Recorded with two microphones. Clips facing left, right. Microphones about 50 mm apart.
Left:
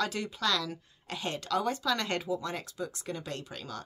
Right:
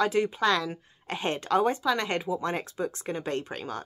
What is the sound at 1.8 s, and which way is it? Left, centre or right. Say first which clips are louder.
Speech: right 4 dB; centre.